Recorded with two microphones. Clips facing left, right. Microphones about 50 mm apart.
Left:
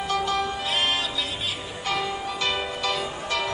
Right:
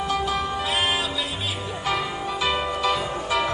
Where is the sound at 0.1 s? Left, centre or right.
Centre.